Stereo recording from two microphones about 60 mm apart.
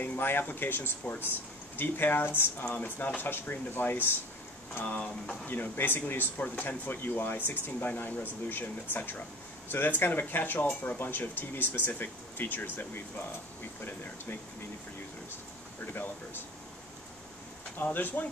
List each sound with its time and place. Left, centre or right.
0.0 s speech: left
15.8 s speech: left
17.7 s speech: left